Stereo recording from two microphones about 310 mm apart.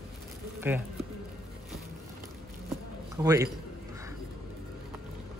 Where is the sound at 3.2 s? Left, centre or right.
Centre.